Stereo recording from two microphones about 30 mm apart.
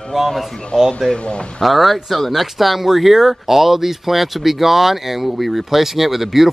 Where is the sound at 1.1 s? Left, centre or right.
Left.